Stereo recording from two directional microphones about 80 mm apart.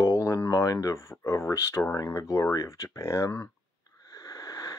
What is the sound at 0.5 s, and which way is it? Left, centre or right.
Speech, left.